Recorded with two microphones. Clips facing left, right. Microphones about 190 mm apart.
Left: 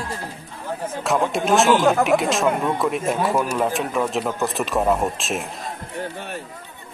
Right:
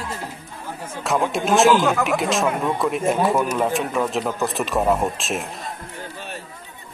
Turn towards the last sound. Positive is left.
turn(degrees=0)  # may be behind; listen again after turning